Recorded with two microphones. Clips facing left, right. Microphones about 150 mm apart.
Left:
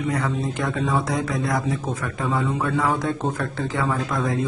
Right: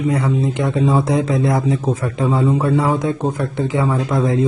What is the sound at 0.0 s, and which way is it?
Speech, 25° right (ahead or behind).